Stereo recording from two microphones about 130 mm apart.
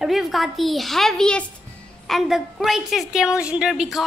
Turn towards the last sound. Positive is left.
turn(degrees=-5)  # may be behind; listen again after turning